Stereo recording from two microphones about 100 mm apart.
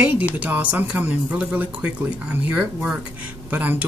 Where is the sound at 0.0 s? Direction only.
15° right (ahead or behind).